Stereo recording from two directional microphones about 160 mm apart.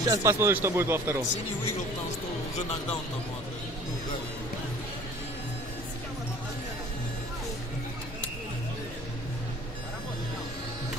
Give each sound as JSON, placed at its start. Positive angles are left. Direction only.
{"t": 0.0, "sound": "speech", "side_deg": -20}